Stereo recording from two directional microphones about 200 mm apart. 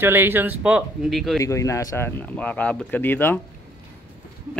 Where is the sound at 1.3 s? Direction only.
15° left (ahead or behind).